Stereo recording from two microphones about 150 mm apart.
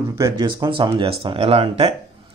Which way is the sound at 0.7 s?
35° right (ahead or behind).